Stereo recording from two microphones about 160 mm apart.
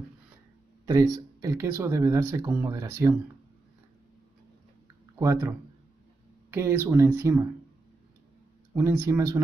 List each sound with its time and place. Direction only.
0.8 s speech: 25° right (ahead or behind)
5.2 s speech: 20° right (ahead or behind)
6.5 s speech: 15° right (ahead or behind)
8.7 s speech: 15° right (ahead or behind)